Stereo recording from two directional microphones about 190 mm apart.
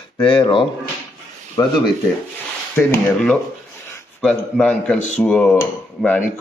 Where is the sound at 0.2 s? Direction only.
25° left (ahead or behind).